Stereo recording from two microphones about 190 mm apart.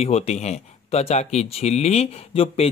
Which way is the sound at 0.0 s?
35° left (ahead or behind).